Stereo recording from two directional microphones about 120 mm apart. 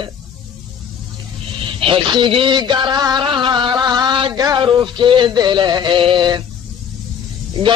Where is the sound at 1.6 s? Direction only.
45° right (ahead or behind).